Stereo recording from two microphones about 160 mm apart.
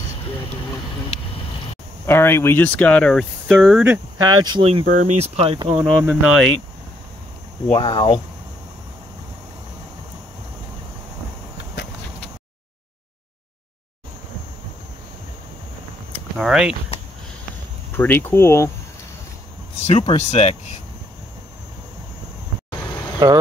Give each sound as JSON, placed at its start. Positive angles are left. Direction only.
{"t": 2.0, "sound": "speech", "side_deg": 15}
{"t": 3.8, "sound": "speech", "side_deg": -20}
{"t": 4.8, "sound": "speech", "side_deg": -50}
{"t": 5.8, "sound": "speech", "side_deg": -10}
{"t": 7.7, "sound": "speech", "side_deg": 30}
{"t": 16.3, "sound": "speech", "side_deg": -5}
{"t": 17.9, "sound": "speech", "side_deg": 10}
{"t": 19.8, "sound": "speech", "side_deg": 40}